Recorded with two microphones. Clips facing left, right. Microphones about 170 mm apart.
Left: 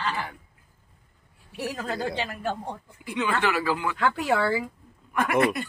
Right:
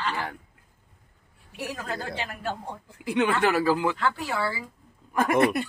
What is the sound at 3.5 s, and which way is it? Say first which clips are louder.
Speech: right 4 dB; 40° right (ahead or behind).